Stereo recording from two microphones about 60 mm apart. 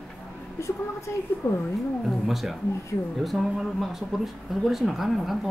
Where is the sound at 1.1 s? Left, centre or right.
Left.